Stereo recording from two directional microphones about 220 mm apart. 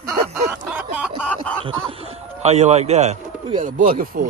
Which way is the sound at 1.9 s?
25° right (ahead or behind).